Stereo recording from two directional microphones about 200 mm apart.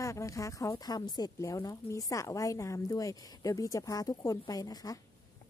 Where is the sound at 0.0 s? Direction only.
15° left (ahead or behind).